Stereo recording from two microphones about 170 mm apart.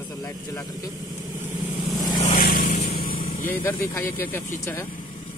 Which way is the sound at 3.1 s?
35° left (ahead or behind).